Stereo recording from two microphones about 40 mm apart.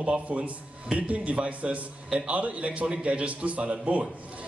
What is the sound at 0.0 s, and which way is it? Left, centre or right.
Speech, right.